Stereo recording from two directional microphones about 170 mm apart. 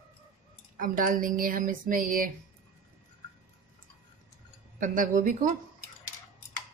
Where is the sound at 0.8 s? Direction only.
50° right (ahead or behind).